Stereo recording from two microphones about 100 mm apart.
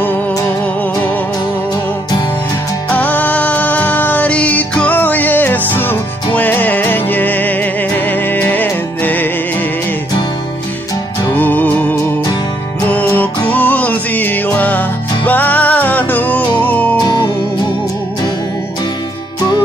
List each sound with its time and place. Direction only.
2.9 s music: 15° left (ahead or behind)
11.3 s music: 15° left (ahead or behind)
13.1 s music: 15° left (ahead or behind)
17.0 s music: 45° left (ahead or behind)